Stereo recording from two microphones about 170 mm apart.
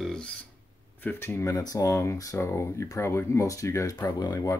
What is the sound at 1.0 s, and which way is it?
Speech, 15° left (ahead or behind).